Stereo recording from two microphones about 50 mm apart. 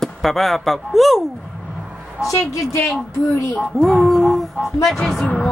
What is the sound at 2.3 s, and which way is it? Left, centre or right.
Speech, left.